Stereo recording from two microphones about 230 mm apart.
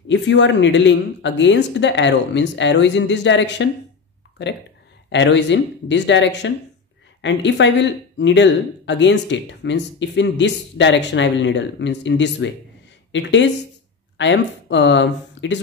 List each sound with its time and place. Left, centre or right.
0.1 s speech: left
5.1 s speech: left